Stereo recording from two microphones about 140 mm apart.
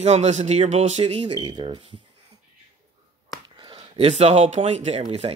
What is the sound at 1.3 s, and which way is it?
Speech, 30° right (ahead or behind).